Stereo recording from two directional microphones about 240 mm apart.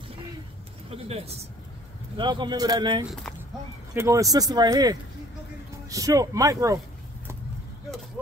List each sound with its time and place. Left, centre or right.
0.8 s speech: right